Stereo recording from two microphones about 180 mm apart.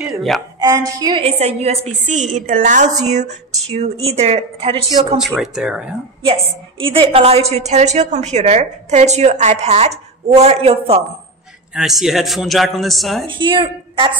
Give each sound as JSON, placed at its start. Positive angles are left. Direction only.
{"t": 0.6, "sound": "a woman's voice", "side_deg": -20}
{"t": 5.2, "sound": "a man's voice", "side_deg": 0}
{"t": 6.2, "sound": "a woman's voice", "side_deg": -30}
{"t": 11.7, "sound": "a man's voice", "side_deg": 0}
{"t": 13.3, "sound": "a woman's voice", "side_deg": -30}